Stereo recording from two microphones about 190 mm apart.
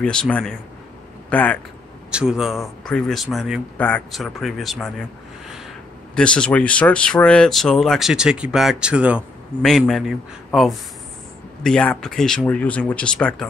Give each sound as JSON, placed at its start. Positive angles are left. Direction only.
{"t": 0.0, "sound": "speech", "side_deg": 5}
{"t": 2.0, "sound": "speech", "side_deg": -5}
{"t": 6.1, "sound": "speech", "side_deg": 5}